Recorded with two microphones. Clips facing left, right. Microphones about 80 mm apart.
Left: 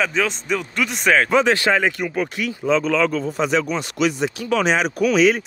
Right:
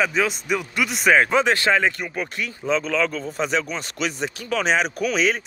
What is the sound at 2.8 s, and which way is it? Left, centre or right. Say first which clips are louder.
Speech: left 4 dB; left.